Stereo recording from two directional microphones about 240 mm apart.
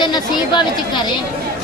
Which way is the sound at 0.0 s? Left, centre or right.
Centre.